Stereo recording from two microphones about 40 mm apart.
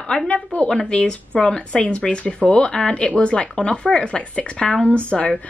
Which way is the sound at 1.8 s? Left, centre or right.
Left.